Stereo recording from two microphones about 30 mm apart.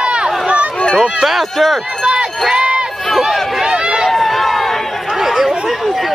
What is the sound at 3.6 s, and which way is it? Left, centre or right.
Run, right.